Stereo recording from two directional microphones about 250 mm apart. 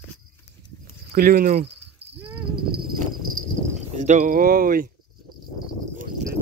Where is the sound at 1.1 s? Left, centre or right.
Right.